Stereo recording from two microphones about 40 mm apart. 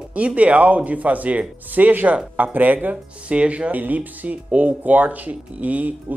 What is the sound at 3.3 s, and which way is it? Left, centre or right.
Speech, right.